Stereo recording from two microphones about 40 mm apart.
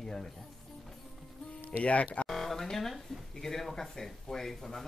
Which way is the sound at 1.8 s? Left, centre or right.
Left.